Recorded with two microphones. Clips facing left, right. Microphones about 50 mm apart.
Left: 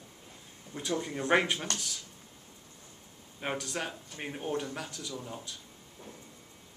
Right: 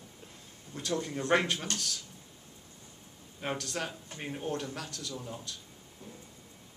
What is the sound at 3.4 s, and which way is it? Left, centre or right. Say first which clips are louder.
Speech: even; centre.